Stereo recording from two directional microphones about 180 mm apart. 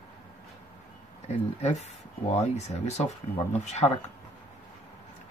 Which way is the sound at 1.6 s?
40° left (ahead or behind).